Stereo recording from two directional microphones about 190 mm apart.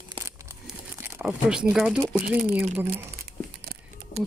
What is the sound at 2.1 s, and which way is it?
Speech, 10° right (ahead or behind).